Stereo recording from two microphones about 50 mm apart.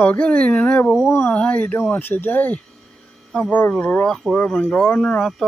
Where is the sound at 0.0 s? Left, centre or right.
Left.